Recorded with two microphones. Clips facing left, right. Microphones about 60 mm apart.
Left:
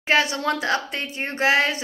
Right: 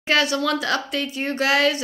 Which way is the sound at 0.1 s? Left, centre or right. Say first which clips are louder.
Even; left.